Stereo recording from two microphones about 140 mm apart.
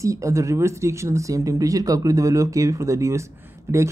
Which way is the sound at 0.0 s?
20° right (ahead or behind).